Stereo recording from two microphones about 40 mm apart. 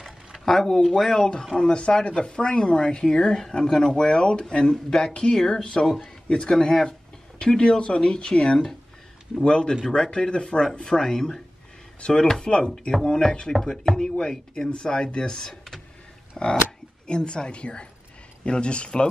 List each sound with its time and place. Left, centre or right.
0.5 s speech: centre
1.6 s speech: left
6.7 s a sound: centre
7.8 s speech: left
11.1 s speech: centre